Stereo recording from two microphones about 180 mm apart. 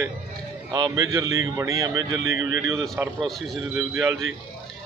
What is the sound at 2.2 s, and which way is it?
Speech, 90° right.